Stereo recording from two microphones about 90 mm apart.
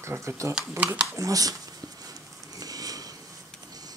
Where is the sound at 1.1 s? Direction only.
40° right (ahead or behind).